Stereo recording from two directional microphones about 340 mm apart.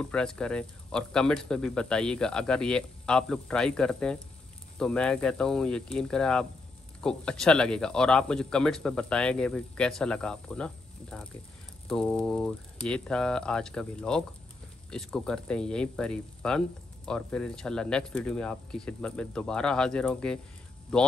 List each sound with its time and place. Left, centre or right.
0.0 s speech: centre